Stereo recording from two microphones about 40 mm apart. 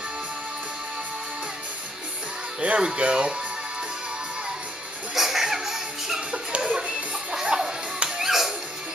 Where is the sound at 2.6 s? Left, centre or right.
Right.